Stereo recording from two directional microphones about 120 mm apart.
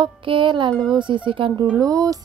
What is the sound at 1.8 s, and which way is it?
Speech, 30° right (ahead or behind).